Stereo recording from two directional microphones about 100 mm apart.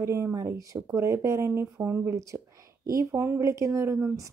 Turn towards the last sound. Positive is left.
turn(degrees=-30)  # may be behind; listen again after turning